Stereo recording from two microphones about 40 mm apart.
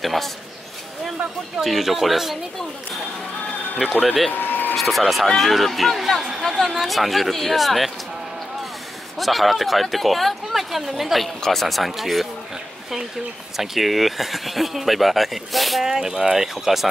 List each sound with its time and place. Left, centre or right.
0.0 s a sound: centre
1.6 s speech: centre
3.8 s speech: centre
4.3 s a sound: left
4.7 s speech: centre
9.2 s speech: centre
13.6 s speech: centre
15.8 s speech: centre